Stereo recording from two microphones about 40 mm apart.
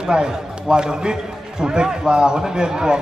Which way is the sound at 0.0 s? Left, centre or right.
Centre.